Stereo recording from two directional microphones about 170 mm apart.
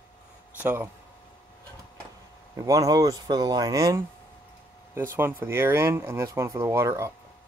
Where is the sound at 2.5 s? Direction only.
20° right (ahead or behind).